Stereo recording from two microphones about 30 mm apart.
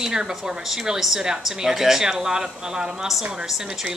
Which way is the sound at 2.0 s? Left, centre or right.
Right.